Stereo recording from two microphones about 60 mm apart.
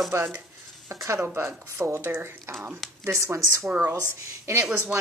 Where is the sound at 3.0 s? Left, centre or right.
Right.